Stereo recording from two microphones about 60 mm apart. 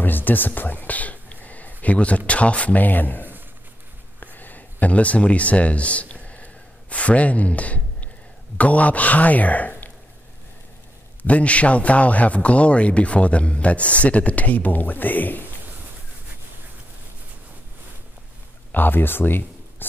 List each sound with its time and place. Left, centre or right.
0.0 s speech: left
4.2 s a sound: left
8.5 s a man's voice: left
11.2 s a man's voice: left
18.7 s speech: left